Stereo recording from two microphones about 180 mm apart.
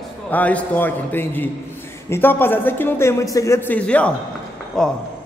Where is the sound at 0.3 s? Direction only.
10° left (ahead or behind).